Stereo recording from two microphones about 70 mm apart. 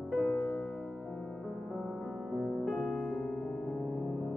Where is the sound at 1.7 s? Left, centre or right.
Centre.